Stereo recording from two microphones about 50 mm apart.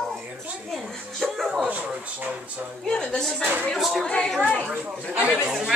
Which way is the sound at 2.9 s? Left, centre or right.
Centre.